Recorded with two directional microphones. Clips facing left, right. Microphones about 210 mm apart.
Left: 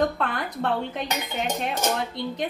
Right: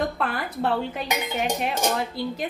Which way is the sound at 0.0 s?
5° right (ahead or behind).